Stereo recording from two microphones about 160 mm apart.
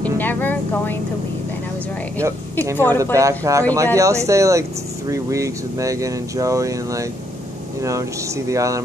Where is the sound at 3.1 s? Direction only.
20° right (ahead or behind).